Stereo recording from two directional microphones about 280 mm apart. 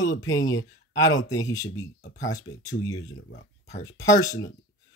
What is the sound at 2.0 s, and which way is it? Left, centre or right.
Speech, left.